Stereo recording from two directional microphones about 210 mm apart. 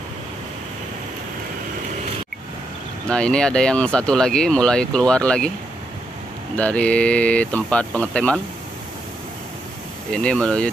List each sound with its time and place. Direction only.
3.1 s speech: 5° left (ahead or behind)
6.5 s speech: 5° left (ahead or behind)
10.1 s speech: 5° left (ahead or behind)